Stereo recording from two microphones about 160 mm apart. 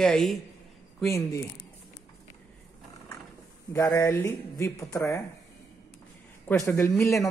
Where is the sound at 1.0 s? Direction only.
20° left (ahead or behind).